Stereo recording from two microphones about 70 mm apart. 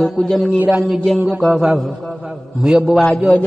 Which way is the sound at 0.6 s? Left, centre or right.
Centre.